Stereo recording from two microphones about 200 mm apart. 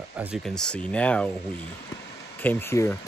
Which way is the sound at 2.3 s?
10° left (ahead or behind).